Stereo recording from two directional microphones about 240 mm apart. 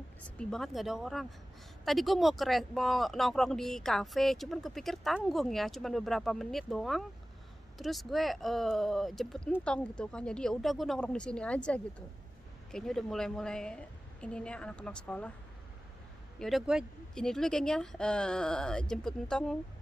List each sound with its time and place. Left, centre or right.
0.2 s speech: centre
16.3 s speech: centre